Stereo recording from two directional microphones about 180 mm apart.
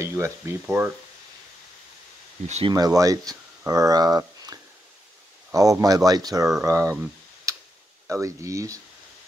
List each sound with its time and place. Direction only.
0.0 s speech: 15° right (ahead or behind)
2.4 s speech: 35° right (ahead or behind)
2.7 s speech: 20° right (ahead or behind)
6.6 s a sound: 15° right (ahead or behind)
8.1 s speech: 15° right (ahead or behind)